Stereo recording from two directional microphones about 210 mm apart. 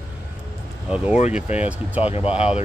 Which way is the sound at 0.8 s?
5° right (ahead or behind).